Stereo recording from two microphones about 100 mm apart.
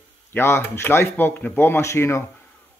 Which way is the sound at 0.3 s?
25° left (ahead or behind).